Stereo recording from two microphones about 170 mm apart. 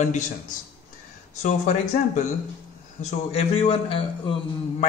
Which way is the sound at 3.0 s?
40° left (ahead or behind).